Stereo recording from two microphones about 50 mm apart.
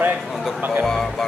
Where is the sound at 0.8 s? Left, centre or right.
Centre.